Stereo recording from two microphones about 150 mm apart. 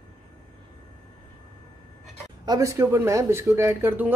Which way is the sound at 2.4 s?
20° right (ahead or behind).